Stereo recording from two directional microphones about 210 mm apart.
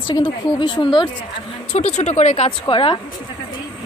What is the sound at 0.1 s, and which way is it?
Speech, 25° left (ahead or behind).